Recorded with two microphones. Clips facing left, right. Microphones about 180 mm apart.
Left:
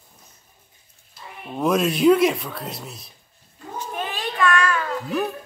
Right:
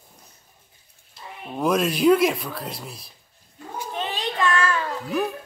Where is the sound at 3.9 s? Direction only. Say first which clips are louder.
Right 1 dB; 20° right (ahead or behind).